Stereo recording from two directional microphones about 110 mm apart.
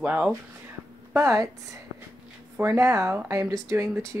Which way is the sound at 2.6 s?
25° right (ahead or behind).